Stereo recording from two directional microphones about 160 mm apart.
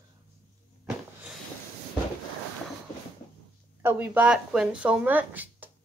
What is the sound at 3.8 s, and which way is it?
Speech, 15° right (ahead or behind).